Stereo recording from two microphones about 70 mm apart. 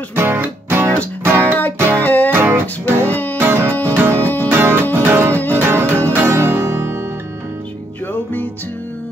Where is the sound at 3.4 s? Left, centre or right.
Right.